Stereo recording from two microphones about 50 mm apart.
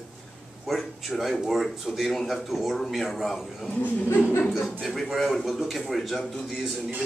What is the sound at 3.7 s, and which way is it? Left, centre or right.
Speech, left.